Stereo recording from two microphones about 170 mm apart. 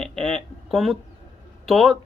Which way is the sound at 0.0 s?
5° left (ahead or behind).